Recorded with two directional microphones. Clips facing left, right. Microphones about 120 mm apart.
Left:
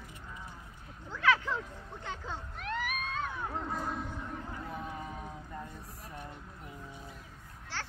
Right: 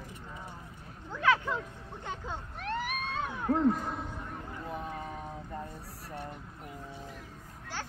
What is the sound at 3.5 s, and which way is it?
Music, 60° right (ahead or behind).